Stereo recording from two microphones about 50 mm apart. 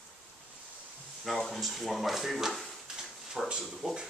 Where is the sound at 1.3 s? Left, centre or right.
Centre.